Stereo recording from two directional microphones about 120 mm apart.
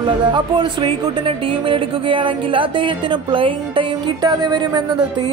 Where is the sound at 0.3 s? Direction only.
40° right (ahead or behind).